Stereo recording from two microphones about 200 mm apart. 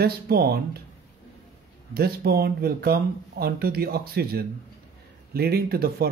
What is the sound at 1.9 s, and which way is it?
Speech, 50° right (ahead or behind).